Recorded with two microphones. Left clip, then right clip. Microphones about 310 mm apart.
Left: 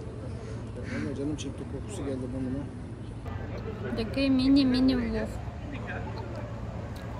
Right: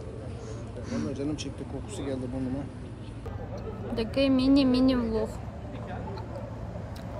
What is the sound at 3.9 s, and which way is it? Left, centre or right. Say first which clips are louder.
A woman's voice: right 3 dB; centre.